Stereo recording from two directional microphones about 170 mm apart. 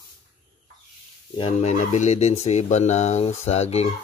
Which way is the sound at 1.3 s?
35° left (ahead or behind).